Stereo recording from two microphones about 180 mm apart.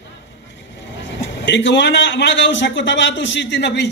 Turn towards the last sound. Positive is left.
turn(degrees=75)  # may be behind; listen again after turning